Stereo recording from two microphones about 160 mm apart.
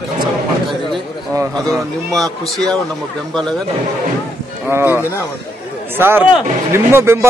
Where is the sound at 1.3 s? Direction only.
20° right (ahead or behind).